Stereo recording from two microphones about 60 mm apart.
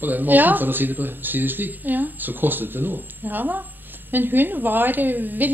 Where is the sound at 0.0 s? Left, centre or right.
Right.